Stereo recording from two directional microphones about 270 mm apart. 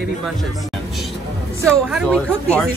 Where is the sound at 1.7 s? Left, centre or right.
Centre.